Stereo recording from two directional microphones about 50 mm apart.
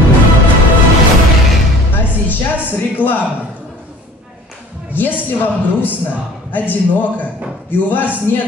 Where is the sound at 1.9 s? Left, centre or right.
Left.